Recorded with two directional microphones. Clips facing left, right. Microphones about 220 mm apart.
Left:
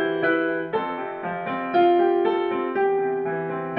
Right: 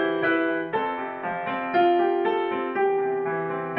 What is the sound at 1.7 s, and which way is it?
Music, 40° left (ahead or behind).